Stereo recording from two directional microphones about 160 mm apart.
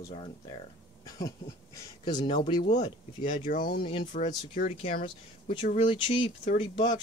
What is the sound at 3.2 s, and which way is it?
Speech, 55° left (ahead or behind).